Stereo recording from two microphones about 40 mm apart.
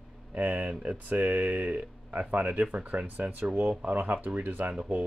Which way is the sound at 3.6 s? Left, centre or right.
Right.